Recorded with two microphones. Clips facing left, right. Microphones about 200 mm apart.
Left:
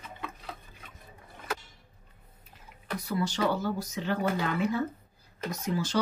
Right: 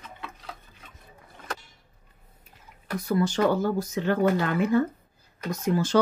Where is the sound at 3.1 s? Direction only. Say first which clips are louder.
Right 6 dB; 50° right (ahead or behind).